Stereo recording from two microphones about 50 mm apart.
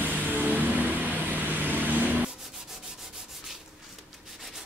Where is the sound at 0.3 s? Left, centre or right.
Right.